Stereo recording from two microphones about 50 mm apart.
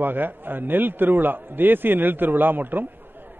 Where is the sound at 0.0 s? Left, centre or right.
Right.